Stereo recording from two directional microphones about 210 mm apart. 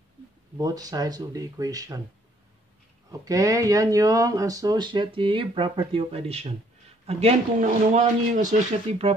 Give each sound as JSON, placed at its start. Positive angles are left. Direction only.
{"t": 0.6, "sound": "speech", "side_deg": -15}
{"t": 3.1, "sound": "speech", "side_deg": -15}